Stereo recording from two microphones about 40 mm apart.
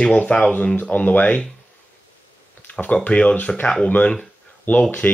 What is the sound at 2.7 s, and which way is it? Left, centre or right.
Speech, left.